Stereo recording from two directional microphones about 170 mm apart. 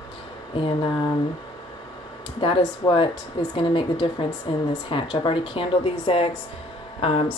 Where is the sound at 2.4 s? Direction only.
25° left (ahead or behind).